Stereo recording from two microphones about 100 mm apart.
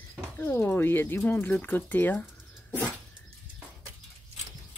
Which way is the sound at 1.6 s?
20° left (ahead or behind).